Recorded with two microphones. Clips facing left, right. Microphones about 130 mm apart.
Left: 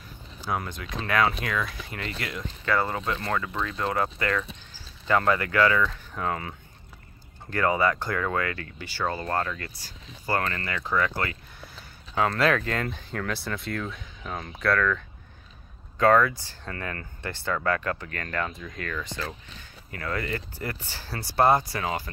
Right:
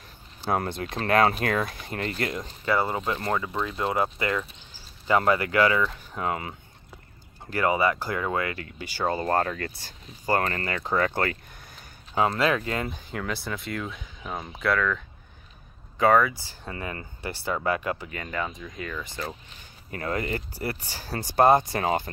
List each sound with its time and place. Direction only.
0.7 s speech: 30° right (ahead or behind)
1.0 s speech: 40° right (ahead or behind)
1.6 s speech: 30° right (ahead or behind)
2.6 s speech: 20° right (ahead or behind)
7.5 s speech: 10° right (ahead or behind)
9.1 s speech: 25° right (ahead or behind)
10.4 s speech: 35° right (ahead or behind)
12.6 s speech: 5° right (ahead or behind)
19.9 s speech: 25° right (ahead or behind)
20.8 s speech: 15° right (ahead or behind)